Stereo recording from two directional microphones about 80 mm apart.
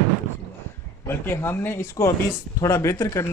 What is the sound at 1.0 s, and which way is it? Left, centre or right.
Speech, left.